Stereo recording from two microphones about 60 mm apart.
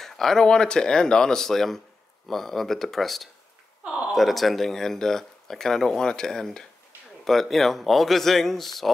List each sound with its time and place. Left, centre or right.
0.0 s speech: centre
3.8 s a sound: centre
4.1 s speech: centre